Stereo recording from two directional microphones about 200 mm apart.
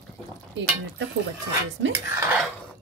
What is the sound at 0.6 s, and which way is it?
Speech, 65° right (ahead or behind).